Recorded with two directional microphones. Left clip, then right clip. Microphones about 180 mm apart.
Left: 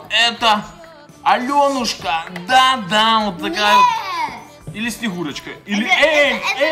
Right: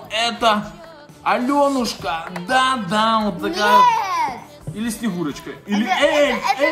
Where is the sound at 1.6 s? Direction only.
15° left (ahead or behind).